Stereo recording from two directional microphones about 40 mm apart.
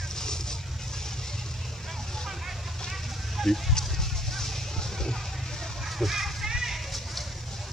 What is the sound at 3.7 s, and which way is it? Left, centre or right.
Vehicle, centre.